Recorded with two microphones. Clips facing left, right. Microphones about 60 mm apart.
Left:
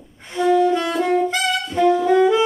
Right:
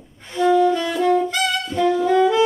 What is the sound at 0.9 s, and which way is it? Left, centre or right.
Saxophone, left.